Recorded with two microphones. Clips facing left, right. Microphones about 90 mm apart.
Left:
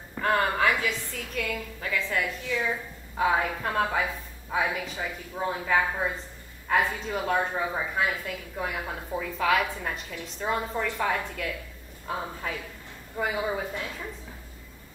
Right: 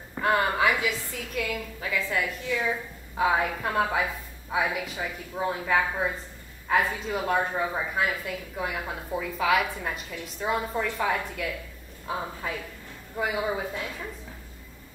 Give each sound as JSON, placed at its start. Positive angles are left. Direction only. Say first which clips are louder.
{"t": 0.2, "sound": "a woman's voice", "louder": "right 1 dB", "side_deg": -5}